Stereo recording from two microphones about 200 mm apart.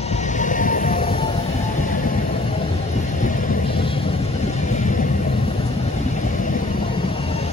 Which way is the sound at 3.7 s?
25° left (ahead or behind).